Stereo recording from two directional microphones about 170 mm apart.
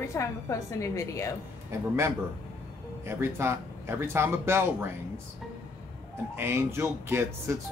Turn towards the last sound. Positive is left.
turn(degrees=-15)  # may be behind; listen again after turning